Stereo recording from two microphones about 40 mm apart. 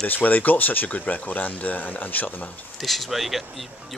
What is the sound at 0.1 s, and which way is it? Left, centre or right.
Speech, left.